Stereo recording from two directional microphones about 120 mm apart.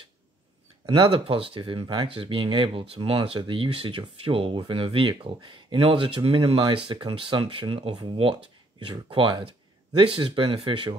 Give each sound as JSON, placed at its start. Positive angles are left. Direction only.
{"t": 0.8, "sound": "speech", "side_deg": -45}